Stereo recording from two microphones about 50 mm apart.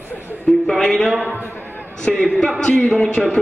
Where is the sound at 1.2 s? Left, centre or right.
Left.